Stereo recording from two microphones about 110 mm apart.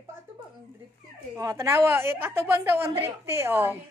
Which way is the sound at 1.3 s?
30° right (ahead or behind).